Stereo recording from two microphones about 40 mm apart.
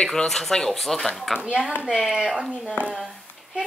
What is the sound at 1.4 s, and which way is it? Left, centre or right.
Speech, right.